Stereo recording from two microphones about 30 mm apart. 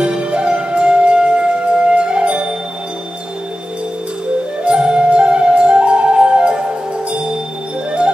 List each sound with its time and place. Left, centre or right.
0.0 s music: right
4.6 s music: right